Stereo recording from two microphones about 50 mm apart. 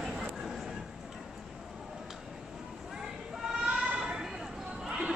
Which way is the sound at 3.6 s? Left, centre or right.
Centre.